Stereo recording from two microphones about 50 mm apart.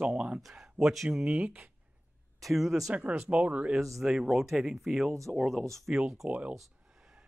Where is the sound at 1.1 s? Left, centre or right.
Centre.